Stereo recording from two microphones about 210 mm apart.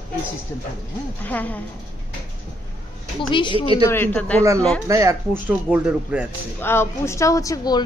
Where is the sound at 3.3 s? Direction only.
25° left (ahead or behind).